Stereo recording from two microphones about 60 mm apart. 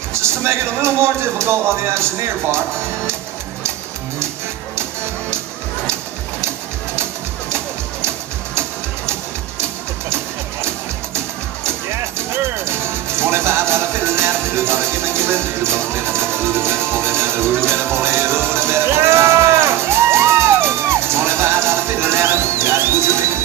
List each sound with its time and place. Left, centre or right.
0.1 s speech: right
7.4 s music: right
12.6 s music: right